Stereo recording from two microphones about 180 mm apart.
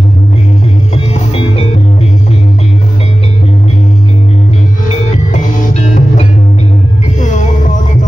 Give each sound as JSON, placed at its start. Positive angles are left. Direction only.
{"t": 1.1, "sound": "music", "side_deg": 35}
{"t": 5.3, "sound": "music", "side_deg": 45}
{"t": 7.2, "sound": "music", "side_deg": 45}